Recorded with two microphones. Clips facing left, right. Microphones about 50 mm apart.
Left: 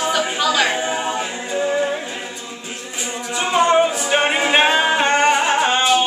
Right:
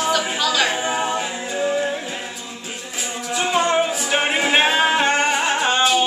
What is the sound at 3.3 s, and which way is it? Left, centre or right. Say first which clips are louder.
A capella: left 3 dB; centre.